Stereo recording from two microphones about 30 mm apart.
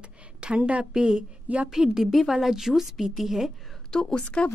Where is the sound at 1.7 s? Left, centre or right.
Centre.